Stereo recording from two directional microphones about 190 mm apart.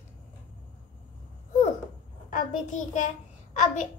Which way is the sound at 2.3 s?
40° left (ahead or behind).